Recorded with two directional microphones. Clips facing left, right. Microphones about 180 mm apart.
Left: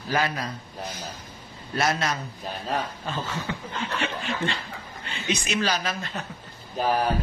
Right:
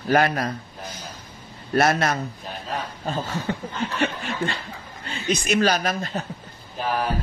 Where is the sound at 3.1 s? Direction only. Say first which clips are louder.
Right 4 dB; 40° right (ahead or behind).